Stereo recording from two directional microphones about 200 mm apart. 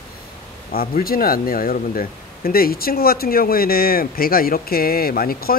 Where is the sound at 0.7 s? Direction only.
50° left (ahead or behind).